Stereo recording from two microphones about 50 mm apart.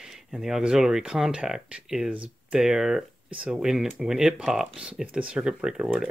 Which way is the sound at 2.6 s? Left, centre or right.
Centre.